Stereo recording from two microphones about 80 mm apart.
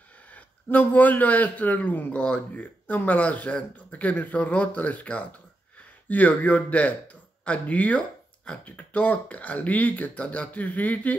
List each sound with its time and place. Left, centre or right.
0.3 s a man's voice: left